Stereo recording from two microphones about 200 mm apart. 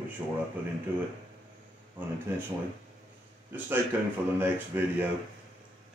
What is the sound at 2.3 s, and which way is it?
Speech, 10° right (ahead or behind).